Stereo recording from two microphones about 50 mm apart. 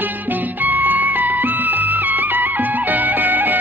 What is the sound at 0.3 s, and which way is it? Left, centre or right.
Music, right.